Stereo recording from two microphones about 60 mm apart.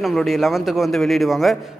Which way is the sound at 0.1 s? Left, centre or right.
Centre.